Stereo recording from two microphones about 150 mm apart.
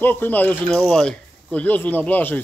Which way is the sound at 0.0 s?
15° left (ahead or behind).